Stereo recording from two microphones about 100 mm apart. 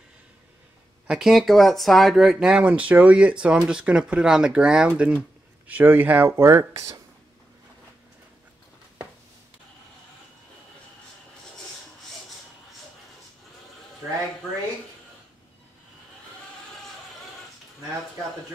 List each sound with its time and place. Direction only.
1.0 s speech: 5° right (ahead or behind); by 7.0 s 30° right (ahead or behind)